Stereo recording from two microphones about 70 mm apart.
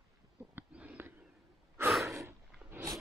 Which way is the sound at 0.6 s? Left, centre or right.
Right.